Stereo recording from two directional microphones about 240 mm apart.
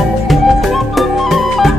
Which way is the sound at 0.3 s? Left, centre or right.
Centre.